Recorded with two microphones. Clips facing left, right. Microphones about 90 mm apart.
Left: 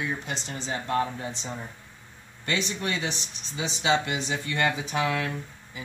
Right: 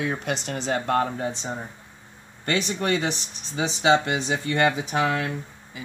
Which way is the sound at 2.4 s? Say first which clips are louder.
Right 4 dB; 50° right (ahead or behind).